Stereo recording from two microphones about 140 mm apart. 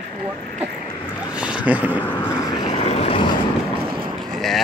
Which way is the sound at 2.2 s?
35° left (ahead or behind).